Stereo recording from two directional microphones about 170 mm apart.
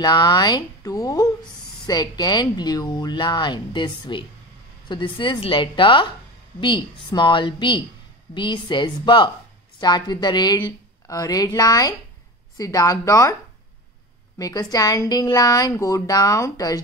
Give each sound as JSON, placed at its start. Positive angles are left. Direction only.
{"t": 0.0, "sound": "speech", "side_deg": 25}
{"t": 14.4, "sound": "speech", "side_deg": 20}